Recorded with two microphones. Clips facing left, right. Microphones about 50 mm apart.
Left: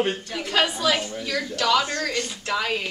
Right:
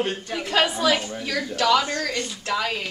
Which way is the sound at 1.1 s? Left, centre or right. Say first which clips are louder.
Even; centre.